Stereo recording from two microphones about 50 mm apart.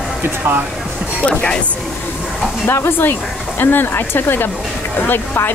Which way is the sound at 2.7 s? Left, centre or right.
Left.